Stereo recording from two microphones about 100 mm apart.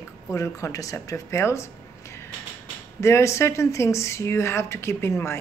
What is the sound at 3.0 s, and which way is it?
A woman's voice, 30° left (ahead or behind).